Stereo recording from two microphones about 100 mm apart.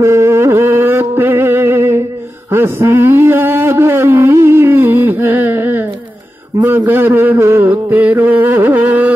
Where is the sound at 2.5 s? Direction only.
25° right (ahead or behind).